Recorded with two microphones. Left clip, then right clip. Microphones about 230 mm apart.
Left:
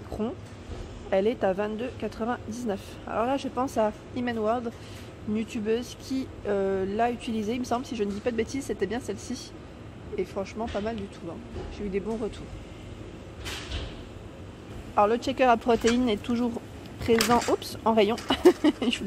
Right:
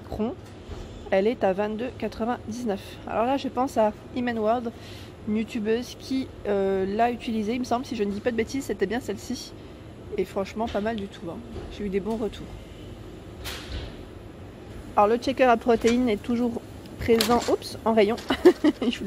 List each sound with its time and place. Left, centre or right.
1.1 s speech: centre
15.0 s speech: centre